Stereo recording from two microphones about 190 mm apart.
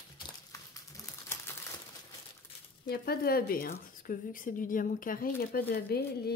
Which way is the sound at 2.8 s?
55° left (ahead or behind).